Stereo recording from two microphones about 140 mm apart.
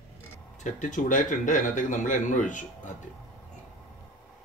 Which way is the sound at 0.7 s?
65° left (ahead or behind).